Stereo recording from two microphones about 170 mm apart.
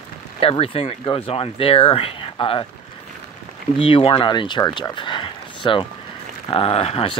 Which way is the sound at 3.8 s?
35° left (ahead or behind).